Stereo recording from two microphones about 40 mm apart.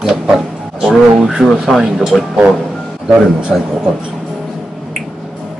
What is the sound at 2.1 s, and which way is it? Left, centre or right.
Speech, centre.